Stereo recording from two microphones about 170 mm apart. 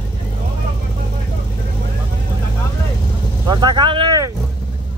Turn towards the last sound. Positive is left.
turn(degrees=-25)  # may be behind; listen again after turning